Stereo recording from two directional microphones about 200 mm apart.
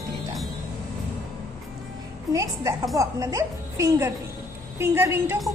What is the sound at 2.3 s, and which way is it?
A woman's voice, 15° right (ahead or behind).